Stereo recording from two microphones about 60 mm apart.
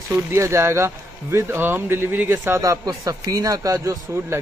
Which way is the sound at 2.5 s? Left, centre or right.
Right.